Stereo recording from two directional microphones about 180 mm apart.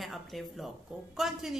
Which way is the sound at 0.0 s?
Centre (ahead or behind).